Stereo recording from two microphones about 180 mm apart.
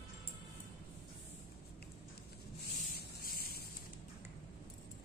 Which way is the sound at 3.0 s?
60° left (ahead or behind).